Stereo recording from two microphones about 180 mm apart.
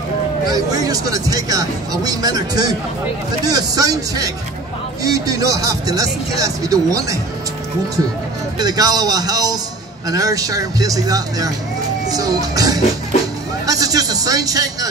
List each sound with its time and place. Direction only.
0.5 s speech: 20° right (ahead or behind)
8.5 s speech: 20° right (ahead or behind)